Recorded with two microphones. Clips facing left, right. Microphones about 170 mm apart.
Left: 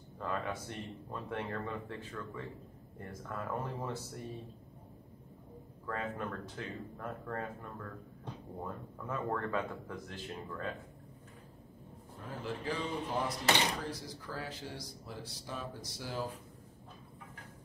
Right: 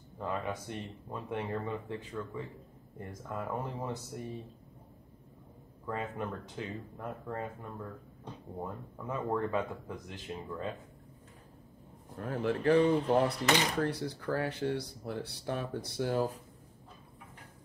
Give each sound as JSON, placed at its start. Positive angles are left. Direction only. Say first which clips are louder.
{"t": 0.2, "sound": "speech", "louder": "right 2 dB", "side_deg": -15}
{"t": 5.9, "sound": "speech", "louder": "right 2 dB", "side_deg": -15}
{"t": 12.2, "sound": "speech", "louder": "right 9 dB", "side_deg": -60}